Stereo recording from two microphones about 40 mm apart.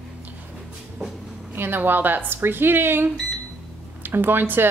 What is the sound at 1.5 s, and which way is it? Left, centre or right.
Speech, right.